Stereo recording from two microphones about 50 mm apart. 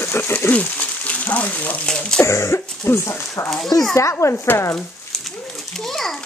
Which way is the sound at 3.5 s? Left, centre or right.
Centre.